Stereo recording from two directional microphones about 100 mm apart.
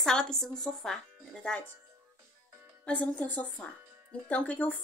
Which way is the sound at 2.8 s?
15° left (ahead or behind).